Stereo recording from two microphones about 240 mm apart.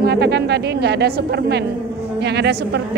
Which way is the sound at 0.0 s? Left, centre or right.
Right.